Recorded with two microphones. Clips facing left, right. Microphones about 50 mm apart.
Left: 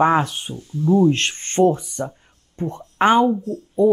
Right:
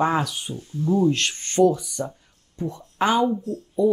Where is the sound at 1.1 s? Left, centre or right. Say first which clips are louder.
Left 2 dB; left.